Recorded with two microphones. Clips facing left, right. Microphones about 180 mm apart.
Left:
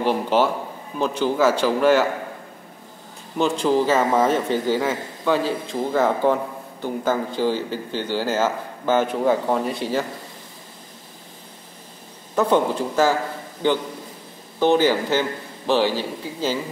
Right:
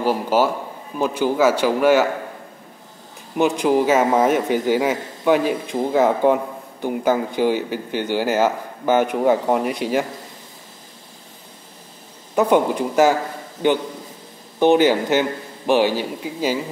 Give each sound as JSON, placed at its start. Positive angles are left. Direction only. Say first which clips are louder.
{"t": 0.0, "sound": "a man's voice", "louder": "right 1 dB", "side_deg": -5}
{"t": 3.3, "sound": "a man's voice", "louder": "right 2 dB", "side_deg": -15}
{"t": 12.4, "sound": "a man's voice", "louder": "right 2 dB", "side_deg": -15}
{"t": 14.6, "sound": "a man's voice", "louder": "right 3 dB", "side_deg": -15}